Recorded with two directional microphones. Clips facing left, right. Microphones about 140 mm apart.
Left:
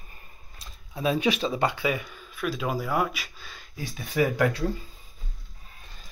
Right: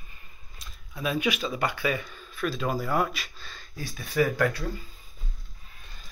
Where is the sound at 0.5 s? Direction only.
30° left (ahead or behind).